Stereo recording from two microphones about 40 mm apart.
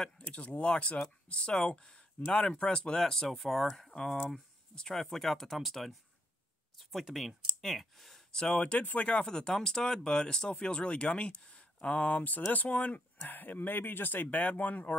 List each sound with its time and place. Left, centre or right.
0.2 s speech: left; by 8.2 s centre
8.3 s speech: centre
8.5 s speech: left
9.2 s speech: centre
12.2 s speech: left